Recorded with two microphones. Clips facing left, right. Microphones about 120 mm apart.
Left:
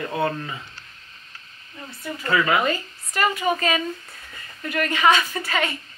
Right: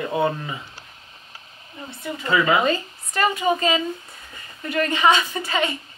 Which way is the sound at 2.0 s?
20° right (ahead or behind).